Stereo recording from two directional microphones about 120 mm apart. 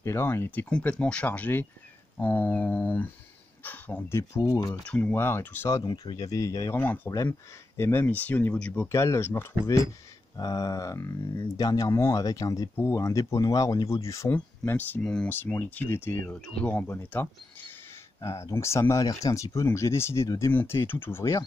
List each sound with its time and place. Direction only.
0.0 s speech: 20° left (ahead or behind)
0.7 s speech: 10° left (ahead or behind); by 4.7 s 30° left (ahead or behind)
4.8 s speech: 10° left (ahead or behind)
8.8 s speech: 25° left (ahead or behind)
14.3 s speech: 15° left (ahead or behind)
16.4 s speech: 10° left (ahead or behind)